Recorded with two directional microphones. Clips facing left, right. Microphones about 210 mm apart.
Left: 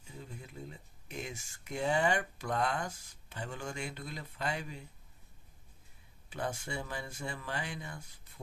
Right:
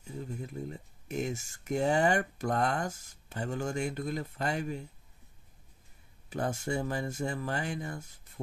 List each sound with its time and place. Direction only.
0.2 s speech: 45° right (ahead or behind)
6.3 s speech: 45° right (ahead or behind)